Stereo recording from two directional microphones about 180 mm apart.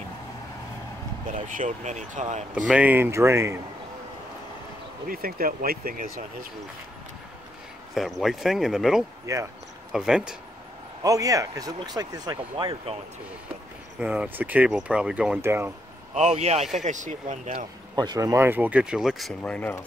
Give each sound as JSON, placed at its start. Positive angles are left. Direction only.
{"t": 1.2, "sound": "speech", "side_deg": -50}
{"t": 2.5, "sound": "speech", "side_deg": -10}
{"t": 5.0, "sound": "speech", "side_deg": -55}
{"t": 7.9, "sound": "speech", "side_deg": 0}
{"t": 9.2, "sound": "speech", "side_deg": -15}
{"t": 9.9, "sound": "speech", "side_deg": -5}
{"t": 11.0, "sound": "speech", "side_deg": -20}
{"t": 13.9, "sound": "speech", "side_deg": -5}
{"t": 16.2, "sound": "speech", "side_deg": -40}
{"t": 17.9, "sound": "speech", "side_deg": -20}